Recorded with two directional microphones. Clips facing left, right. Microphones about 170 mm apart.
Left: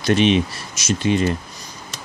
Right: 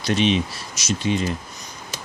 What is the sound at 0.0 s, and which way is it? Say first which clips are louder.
Speech: left 4 dB; 55° left (ahead or behind).